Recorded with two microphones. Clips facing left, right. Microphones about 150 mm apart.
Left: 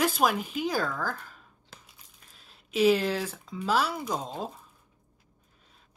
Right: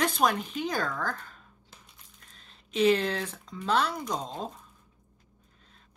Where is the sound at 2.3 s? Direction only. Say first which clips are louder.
Left 1 dB; 5° left (ahead or behind).